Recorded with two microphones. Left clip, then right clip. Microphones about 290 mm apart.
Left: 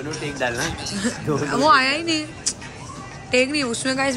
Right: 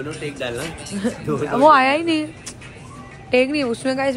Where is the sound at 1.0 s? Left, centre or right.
Centre.